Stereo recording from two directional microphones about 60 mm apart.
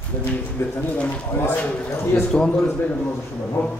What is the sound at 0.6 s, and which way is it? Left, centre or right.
Speech, left.